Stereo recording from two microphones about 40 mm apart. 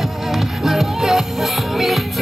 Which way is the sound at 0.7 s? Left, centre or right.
Centre.